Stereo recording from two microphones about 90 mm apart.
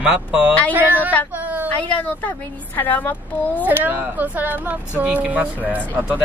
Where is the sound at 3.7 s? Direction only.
20° right (ahead or behind).